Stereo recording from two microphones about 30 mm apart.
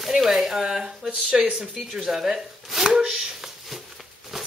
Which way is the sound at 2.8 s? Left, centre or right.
Right.